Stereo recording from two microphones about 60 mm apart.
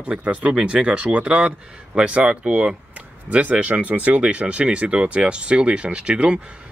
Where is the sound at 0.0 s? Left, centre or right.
Right.